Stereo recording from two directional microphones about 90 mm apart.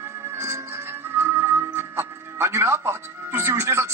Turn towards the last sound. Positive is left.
turn(degrees=-30)  # may be behind; listen again after turning